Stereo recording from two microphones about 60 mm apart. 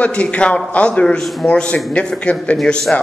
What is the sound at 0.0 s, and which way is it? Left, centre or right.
A man's voice, left.